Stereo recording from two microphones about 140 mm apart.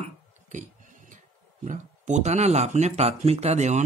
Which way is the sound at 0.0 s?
60° right (ahead or behind).